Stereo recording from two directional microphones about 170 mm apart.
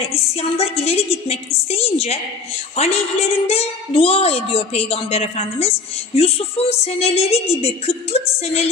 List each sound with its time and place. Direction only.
0.4 s a woman's voice: 35° left (ahead or behind)